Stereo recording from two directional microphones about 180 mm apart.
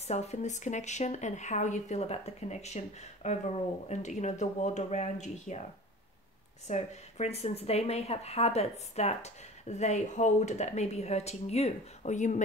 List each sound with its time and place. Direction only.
0.1 s speech: 40° left (ahead or behind)
6.7 s speech: 40° left (ahead or behind)